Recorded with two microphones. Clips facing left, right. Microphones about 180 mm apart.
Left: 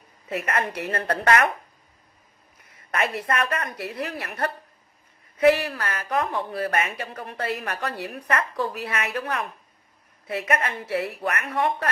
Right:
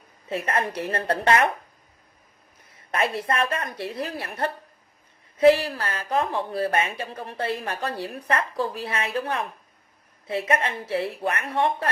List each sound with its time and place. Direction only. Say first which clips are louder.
0.3 s a woman's voice: right 1 dB; 30° right (ahead or behind)
2.9 s a woman's voice: right 1 dB; 30° right (ahead or behind)
5.4 s a woman's voice: right 2 dB; 30° right (ahead or behind)